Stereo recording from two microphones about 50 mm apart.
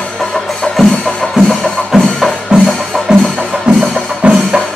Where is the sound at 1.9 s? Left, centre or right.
Centre.